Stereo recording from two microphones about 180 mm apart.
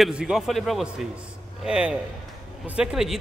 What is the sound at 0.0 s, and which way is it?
A man's voice, 5° right (ahead or behind).